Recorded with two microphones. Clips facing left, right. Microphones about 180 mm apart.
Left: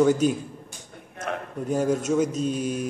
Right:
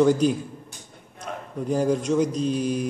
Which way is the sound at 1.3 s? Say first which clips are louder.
Left 4 dB; 70° left (ahead or behind).